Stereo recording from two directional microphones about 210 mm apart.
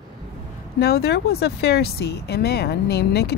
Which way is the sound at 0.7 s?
50° left (ahead or behind).